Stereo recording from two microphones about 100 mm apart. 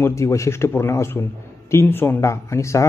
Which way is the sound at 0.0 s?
30° left (ahead or behind).